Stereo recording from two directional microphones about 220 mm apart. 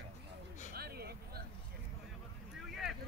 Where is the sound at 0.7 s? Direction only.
45° right (ahead or behind).